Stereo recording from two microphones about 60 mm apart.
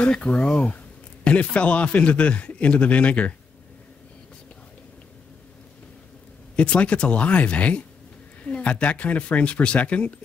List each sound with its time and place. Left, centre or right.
0.0 s a man's voice: centre
6.5 s a man's voice: centre